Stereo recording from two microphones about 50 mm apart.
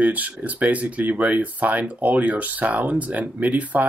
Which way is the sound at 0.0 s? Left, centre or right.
Right.